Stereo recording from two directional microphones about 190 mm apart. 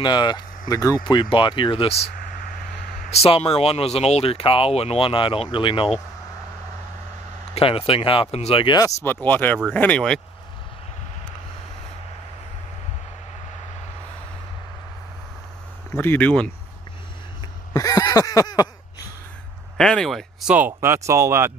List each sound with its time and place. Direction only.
0.0 s speech: 25° left (ahead or behind)
7.5 s speech: 30° left (ahead or behind); by 10.2 s 5° left (ahead or behind)
15.9 s speech: 10° left (ahead or behind)
17.7 s speech: 20° left (ahead or behind)
19.8 s speech: 5° left (ahead or behind); by 21.5 s 15° right (ahead or behind)